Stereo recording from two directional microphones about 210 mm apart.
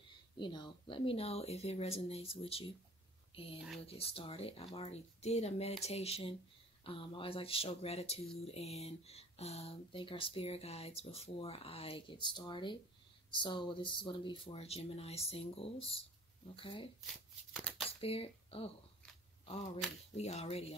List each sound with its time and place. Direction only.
0.1 s speech: 20° left (ahead or behind)
3.8 s speech: 25° left (ahead or behind)
17.0 s shuffling cards: centre (ahead or behind)
17.8 s speech: 25° left (ahead or behind)
20.2 s speech: 30° left (ahead or behind)